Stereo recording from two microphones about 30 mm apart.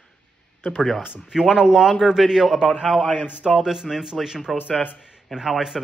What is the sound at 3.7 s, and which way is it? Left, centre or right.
Speech, centre.